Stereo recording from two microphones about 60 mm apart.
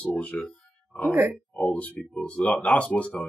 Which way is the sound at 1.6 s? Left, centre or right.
Left.